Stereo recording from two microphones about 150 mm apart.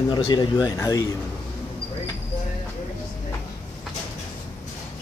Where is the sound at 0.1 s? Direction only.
30° left (ahead or behind).